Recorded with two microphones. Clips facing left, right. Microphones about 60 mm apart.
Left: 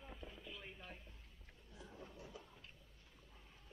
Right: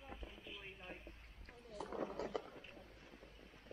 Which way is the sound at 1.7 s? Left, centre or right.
Right.